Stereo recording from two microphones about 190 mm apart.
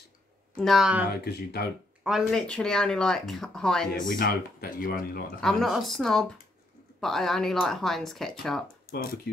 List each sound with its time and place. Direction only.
0.6 s speech: centre (ahead or behind)
1.2 s speech: 55° left (ahead or behind)
2.0 s speech: centre (ahead or behind)
4.2 s speech: 50° left (ahead or behind)
5.4 s speech: centre (ahead or behind)